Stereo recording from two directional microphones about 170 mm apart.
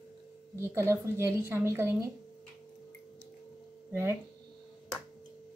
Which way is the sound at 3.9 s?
15° right (ahead or behind).